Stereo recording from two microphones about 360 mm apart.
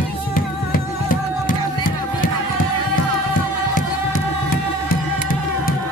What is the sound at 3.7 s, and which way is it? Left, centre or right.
Music, left.